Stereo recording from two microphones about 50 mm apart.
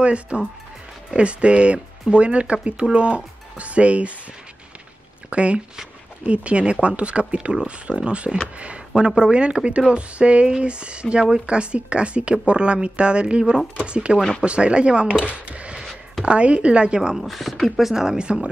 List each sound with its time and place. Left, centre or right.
0.0 s speech: right
5.3 s speech: right
15.1 s a sound: right
16.3 s speech: right
17.2 s speech: centre